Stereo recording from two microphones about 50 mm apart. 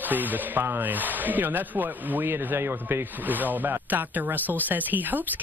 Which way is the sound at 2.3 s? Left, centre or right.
Right.